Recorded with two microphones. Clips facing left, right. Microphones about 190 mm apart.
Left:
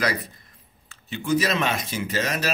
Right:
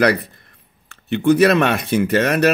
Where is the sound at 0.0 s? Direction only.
60° right (ahead or behind).